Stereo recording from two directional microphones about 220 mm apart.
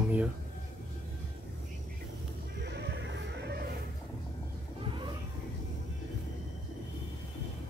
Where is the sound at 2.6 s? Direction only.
50° right (ahead or behind).